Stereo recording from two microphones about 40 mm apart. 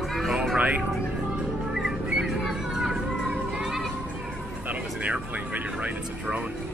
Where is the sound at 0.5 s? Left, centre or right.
Right.